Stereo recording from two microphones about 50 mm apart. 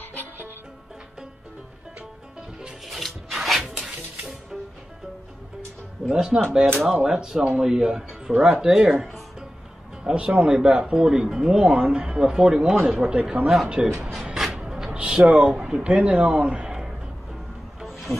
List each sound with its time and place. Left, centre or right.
2.9 s music: centre
6.0 s speech: centre
10.0 s speech: centre
14.2 s a sound: centre
15.0 s a man's voice: right